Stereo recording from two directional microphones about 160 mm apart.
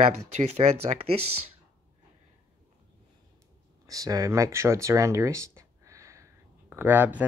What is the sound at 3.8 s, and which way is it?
Speech, 20° right (ahead or behind).